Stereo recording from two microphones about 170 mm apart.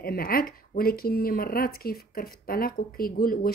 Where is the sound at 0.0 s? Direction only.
60° left (ahead or behind).